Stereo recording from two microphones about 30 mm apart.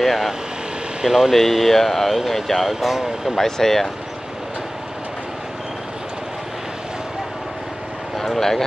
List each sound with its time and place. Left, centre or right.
0.0 s air conditioning: centre
1.0 s speech: centre
1.3 s speech: centre
3.3 s speech: centre
8.2 s speech: centre